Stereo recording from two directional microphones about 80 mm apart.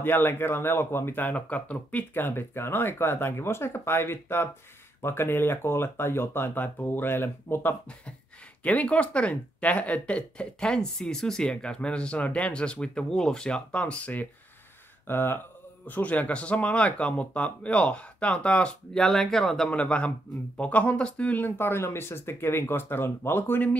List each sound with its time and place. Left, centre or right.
0.0 s speech: left
8.6 s speech: centre
15.0 s speech: left